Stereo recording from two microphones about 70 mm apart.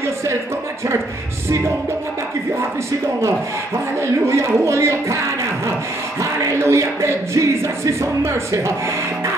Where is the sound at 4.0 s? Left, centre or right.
Right.